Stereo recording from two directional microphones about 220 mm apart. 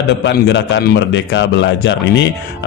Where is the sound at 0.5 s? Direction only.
55° left (ahead or behind).